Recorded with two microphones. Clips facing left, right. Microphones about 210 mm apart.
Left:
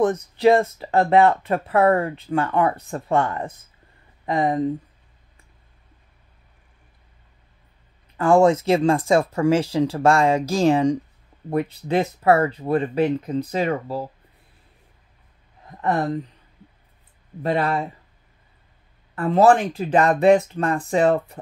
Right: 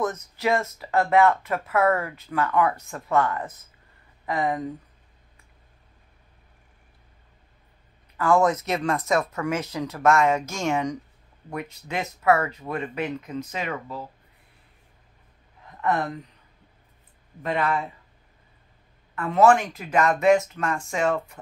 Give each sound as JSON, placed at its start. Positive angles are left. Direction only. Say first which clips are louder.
{"t": 0.0, "sound": "speech", "louder": "left 9 dB", "side_deg": 30}
{"t": 8.2, "sound": "speech", "louder": "left 5 dB", "side_deg": 30}
{"t": 15.8, "sound": "speech", "louder": "left 3 dB", "side_deg": 35}
{"t": 17.4, "sound": "speech", "louder": "left 4 dB", "side_deg": 35}
{"t": 19.1, "sound": "speech", "louder": "left 3 dB", "side_deg": 35}